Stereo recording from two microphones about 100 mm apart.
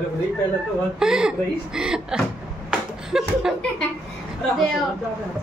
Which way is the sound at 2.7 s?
5° right (ahead or behind).